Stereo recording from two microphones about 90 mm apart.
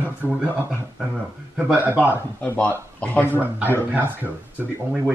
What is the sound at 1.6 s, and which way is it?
Speech, 15° right (ahead or behind).